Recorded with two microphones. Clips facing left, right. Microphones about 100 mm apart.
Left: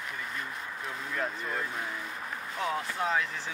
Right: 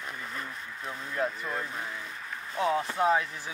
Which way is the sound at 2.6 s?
30° right (ahead or behind).